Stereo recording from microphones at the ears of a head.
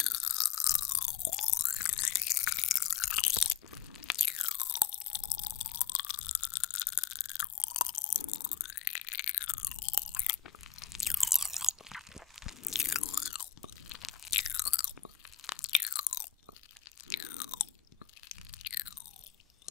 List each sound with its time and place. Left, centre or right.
0.0 s chewing: left
4.0 s crunch: left
11.2 s chewing: centre
12.4 s crunch: left
15.4 s chewing: left
18.3 s a sound: left